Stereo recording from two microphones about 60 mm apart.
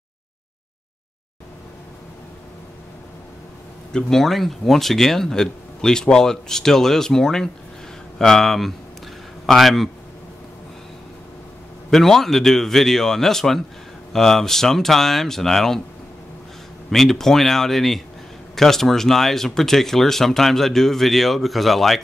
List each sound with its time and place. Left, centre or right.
3.9 s speech: centre
11.9 s speech: centre
16.9 s speech: centre